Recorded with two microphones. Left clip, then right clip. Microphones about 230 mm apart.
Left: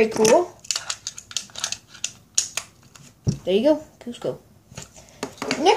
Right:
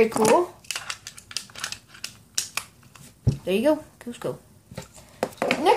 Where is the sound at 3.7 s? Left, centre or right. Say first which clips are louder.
Left 3 dB; right.